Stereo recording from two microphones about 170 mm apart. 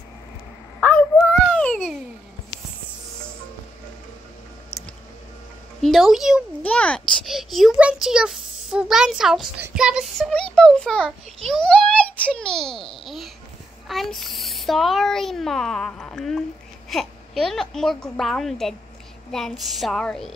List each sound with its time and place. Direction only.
0.7 s dog: 10° left (ahead or behind)
5.8 s a sound: centre (ahead or behind)
6.6 s a child's voice: 5° left (ahead or behind)